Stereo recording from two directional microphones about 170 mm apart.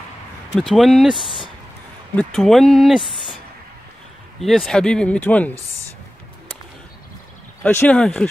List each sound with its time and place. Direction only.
0.6 s speech: centre (ahead or behind)
4.4 s speech: centre (ahead or behind)
7.6 s speech: 10° left (ahead or behind)